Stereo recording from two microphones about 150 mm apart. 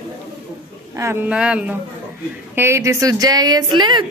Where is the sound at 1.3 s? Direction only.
5° right (ahead or behind); by 4.0 s 30° right (ahead or behind).